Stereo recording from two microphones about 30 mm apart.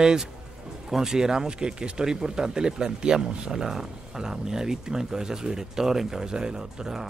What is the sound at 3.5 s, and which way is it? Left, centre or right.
Speech, centre.